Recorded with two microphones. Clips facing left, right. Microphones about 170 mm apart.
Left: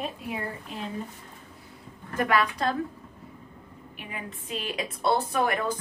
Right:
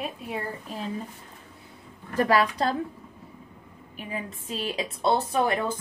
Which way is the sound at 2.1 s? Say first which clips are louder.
Right 3 dB; 35° right (ahead or behind).